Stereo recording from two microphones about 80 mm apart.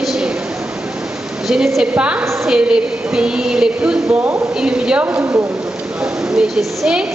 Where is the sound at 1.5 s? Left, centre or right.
Centre.